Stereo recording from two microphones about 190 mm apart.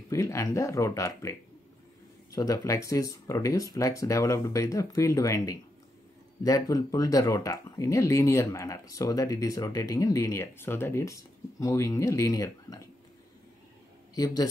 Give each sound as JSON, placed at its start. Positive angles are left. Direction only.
{"t": 0.1, "sound": "speech", "side_deg": 15}
{"t": 2.3, "sound": "speech", "side_deg": 20}
{"t": 14.1, "sound": "speech", "side_deg": 20}